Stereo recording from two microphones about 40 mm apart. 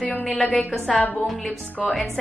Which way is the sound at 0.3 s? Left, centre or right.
Centre.